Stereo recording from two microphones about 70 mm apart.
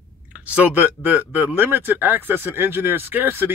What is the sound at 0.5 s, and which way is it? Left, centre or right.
Speech, right.